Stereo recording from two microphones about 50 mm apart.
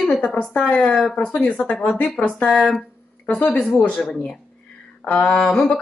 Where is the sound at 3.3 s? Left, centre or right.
Left.